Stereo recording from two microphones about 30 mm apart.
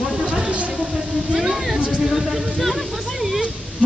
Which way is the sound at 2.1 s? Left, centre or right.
Centre.